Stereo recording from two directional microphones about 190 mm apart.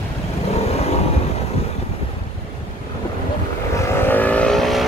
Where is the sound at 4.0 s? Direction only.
10° left (ahead or behind).